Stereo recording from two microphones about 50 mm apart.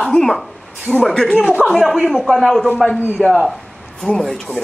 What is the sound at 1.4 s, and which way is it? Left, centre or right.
Speech, centre.